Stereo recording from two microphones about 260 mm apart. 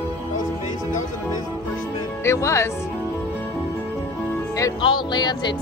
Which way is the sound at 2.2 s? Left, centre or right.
Centre.